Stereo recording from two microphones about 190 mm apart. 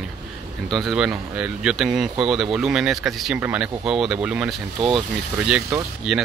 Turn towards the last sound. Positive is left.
turn(degrees=-5)  # may be behind; listen again after turning